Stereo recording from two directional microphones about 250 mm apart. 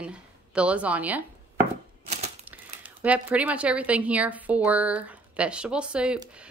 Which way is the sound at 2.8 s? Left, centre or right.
Centre.